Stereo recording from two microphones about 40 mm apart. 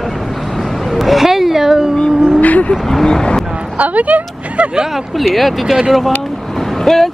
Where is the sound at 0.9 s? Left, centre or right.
Centre.